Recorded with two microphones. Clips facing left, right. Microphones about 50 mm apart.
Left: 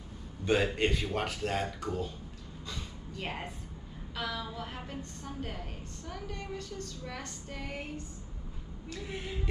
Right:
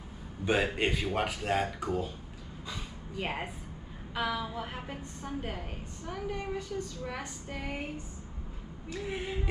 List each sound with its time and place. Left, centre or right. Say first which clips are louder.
0.5 s a woman's voice: even; centre
2.7 s a sound: right 2 dB; centre
4.1 s a woman's voice: right 4 dB; centre